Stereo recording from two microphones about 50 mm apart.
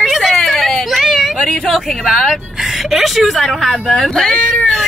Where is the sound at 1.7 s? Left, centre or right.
Centre.